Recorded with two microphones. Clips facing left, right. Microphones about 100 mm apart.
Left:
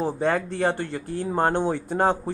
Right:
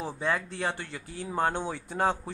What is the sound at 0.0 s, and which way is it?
Speech, 50° left (ahead or behind).